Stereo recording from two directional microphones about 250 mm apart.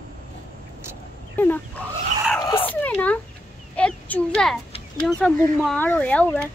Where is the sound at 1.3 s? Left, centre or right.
Centre.